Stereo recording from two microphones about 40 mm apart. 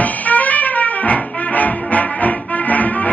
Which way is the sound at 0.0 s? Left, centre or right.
Left.